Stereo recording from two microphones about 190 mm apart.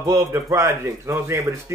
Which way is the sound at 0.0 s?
15° right (ahead or behind).